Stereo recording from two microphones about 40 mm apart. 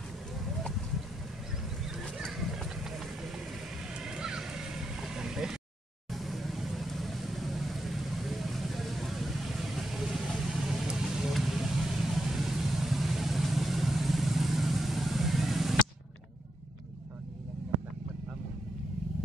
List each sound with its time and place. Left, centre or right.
4.0 s vehicle: centre
6.1 s vehicle: centre